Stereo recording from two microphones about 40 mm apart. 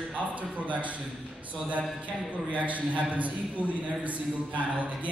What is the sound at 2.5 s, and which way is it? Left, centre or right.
Speech, right.